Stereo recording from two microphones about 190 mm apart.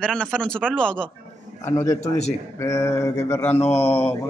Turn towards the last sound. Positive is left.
turn(degrees=30)  # may be behind; listen again after turning